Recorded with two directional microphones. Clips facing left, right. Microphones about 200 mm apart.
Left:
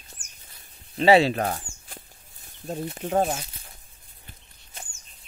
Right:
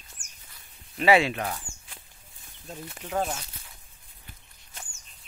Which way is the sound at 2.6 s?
35° left (ahead or behind).